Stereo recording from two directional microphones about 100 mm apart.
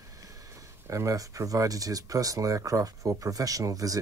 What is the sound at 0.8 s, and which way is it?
Speech, 30° right (ahead or behind).